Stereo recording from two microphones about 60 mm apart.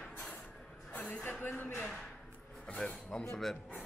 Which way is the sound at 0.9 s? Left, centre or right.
Left.